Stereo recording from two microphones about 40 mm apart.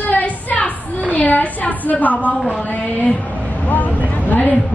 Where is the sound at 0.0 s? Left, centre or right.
Left.